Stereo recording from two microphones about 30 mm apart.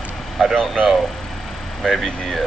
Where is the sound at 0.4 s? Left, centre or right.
Centre.